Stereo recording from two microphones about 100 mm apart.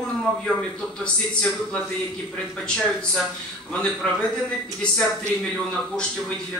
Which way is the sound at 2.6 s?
5° left (ahead or behind).